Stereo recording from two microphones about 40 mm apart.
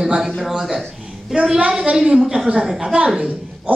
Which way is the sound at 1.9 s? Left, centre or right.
Centre.